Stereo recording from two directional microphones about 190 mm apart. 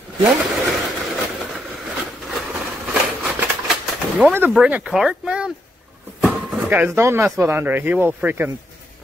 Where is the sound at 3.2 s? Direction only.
Centre (ahead or behind).